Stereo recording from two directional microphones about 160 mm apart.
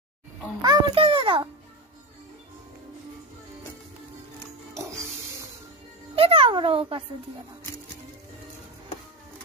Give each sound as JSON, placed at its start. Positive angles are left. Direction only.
{"t": 0.6, "sound": "a child's voice", "side_deg": -30}
{"t": 4.7, "sound": "music", "side_deg": -20}
{"t": 6.1, "sound": "a child's voice", "side_deg": -35}